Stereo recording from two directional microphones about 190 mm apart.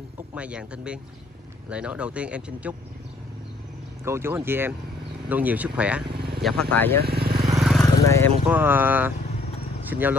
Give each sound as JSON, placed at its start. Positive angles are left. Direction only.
{"t": 0.3, "sound": "speech", "side_deg": -5}
{"t": 4.0, "sound": "speech", "side_deg": -15}
{"t": 7.0, "sound": "speech", "side_deg": -55}
{"t": 7.5, "sound": "vehicle", "side_deg": 0}
{"t": 8.0, "sound": "vehicle", "side_deg": 15}
{"t": 8.5, "sound": "speech", "side_deg": -10}